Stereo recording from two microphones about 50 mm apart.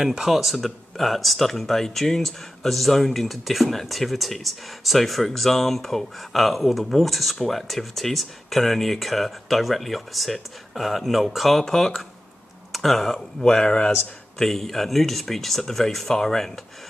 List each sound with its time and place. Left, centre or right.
0.0 s speech: centre
13.4 s speech: centre
14.4 s speech: centre